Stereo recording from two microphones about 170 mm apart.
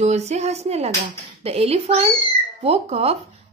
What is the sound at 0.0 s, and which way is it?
A woman's voice, 40° right (ahead or behind).